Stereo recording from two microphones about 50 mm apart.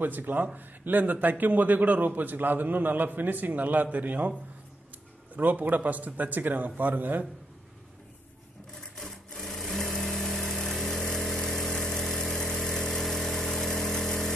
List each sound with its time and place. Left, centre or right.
0.0 s a man's voice: right
5.3 s a man's voice: right
8.9 s sewing machine: centre
10.0 s vehicle: centre